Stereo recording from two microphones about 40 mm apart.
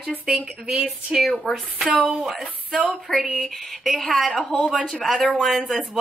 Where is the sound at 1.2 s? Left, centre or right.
Centre.